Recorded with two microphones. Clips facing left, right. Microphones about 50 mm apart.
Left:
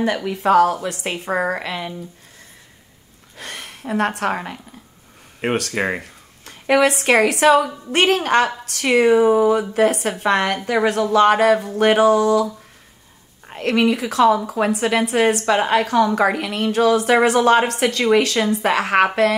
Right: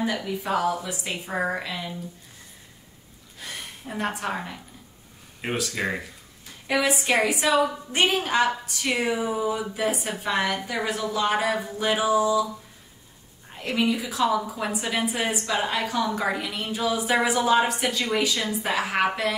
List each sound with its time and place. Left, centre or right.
0.0 s speech: left
3.3 s a woman's voice: left
13.5 s a woman's voice: left